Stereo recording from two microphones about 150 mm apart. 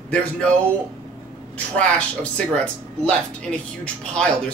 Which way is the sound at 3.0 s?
5° left (ahead or behind).